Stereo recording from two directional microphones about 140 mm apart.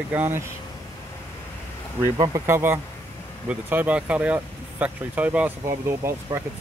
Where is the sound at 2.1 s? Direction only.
30° right (ahead or behind).